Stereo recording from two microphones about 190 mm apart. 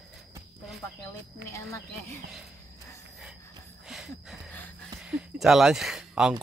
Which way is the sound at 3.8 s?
Centre (ahead or behind).